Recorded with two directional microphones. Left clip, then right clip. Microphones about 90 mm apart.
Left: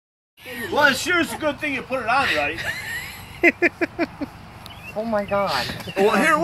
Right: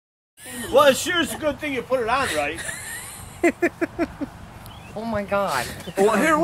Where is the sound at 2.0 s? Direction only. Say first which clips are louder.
Left 2 dB; 40° right (ahead or behind).